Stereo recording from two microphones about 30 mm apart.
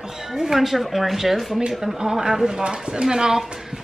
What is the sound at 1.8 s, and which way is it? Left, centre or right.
Speech, centre.